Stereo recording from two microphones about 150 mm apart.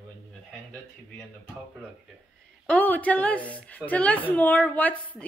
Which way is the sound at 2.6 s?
10° left (ahead or behind).